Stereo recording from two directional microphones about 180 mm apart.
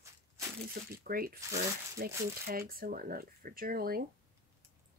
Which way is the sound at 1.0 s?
55° right (ahead or behind).